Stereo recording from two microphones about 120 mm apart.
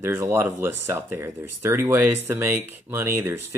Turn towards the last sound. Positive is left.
turn(degrees=-20)  # may be behind; listen again after turning